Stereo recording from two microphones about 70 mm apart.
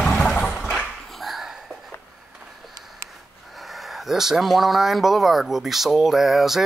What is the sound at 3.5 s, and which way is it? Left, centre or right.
Speech, centre.